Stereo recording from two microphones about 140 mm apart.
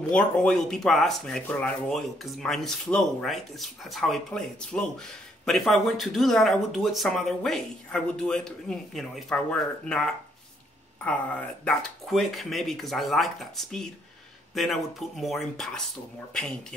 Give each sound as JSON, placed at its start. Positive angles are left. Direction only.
{"t": 0.1, "sound": "speech", "side_deg": 5}